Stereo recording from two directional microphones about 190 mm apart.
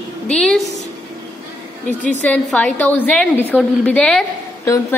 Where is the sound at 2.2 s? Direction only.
5° left (ahead or behind).